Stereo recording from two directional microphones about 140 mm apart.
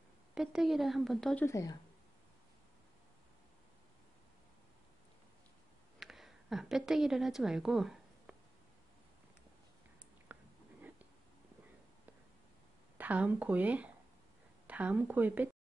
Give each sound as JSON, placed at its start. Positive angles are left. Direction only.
{"t": 0.3, "sound": "a woman's voice", "side_deg": -5}
{"t": 1.4, "sound": "speech", "side_deg": 25}
{"t": 5.9, "sound": "a sound", "side_deg": 0}
{"t": 10.3, "sound": "chewing", "side_deg": -10}
{"t": 12.9, "sound": "a woman's voice", "side_deg": -10}